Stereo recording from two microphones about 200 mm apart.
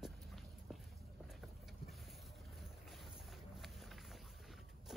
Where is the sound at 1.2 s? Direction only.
Centre (ahead or behind).